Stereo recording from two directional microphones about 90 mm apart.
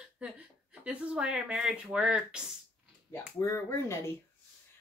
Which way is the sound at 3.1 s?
30° left (ahead or behind).